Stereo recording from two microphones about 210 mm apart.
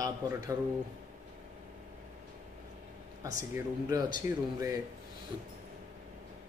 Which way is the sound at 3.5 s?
15° right (ahead or behind).